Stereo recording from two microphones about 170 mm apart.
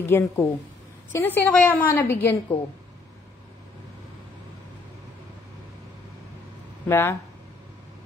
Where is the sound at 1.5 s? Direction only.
10° left (ahead or behind).